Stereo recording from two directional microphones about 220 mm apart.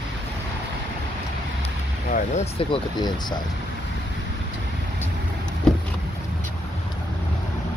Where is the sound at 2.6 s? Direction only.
20° left (ahead or behind).